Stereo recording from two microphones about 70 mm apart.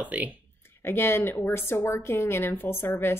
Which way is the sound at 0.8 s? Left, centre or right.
Left.